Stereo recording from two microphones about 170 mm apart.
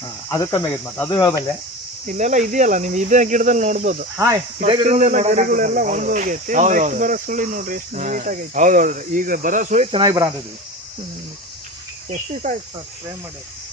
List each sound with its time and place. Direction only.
0.3 s speech: 20° left (ahead or behind)
2.0 s speech: 45° right (ahead or behind)
9.8 s speech: 30° right (ahead or behind)
12.1 s speech: 45° right (ahead or behind)